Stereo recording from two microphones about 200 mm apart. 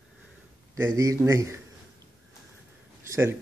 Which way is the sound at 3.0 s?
15° right (ahead or behind).